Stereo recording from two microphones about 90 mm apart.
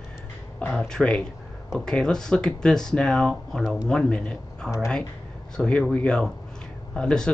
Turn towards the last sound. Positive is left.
turn(degrees=10)  # may be behind; listen again after turning